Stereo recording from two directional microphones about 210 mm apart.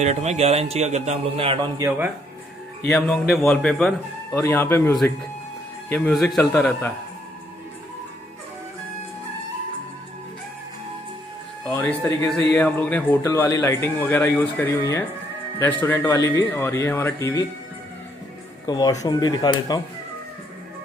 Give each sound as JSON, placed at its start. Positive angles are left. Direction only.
{"t": 0.0, "sound": "a man's voice", "side_deg": -30}
{"t": 1.8, "sound": "speech", "side_deg": -10}
{"t": 2.8, "sound": "a man's voice", "side_deg": 5}
{"t": 11.7, "sound": "a man's voice", "side_deg": 10}
{"t": 18.7, "sound": "speech", "side_deg": 20}